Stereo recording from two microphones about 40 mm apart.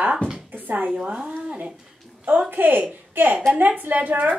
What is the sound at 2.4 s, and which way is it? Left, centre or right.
A woman's voice, right.